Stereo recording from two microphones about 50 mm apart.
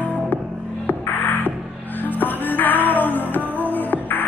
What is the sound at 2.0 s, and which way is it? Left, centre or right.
Music, left.